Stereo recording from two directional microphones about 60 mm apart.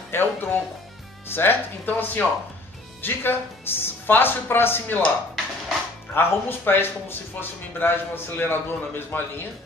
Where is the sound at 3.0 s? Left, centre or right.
Left.